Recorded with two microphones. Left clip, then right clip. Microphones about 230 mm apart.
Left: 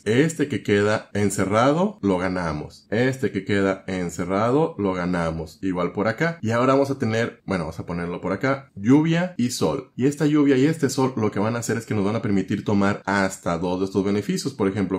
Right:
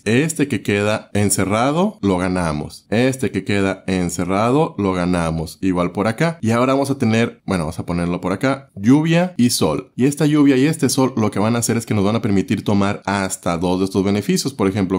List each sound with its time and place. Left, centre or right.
0.0 s speech: right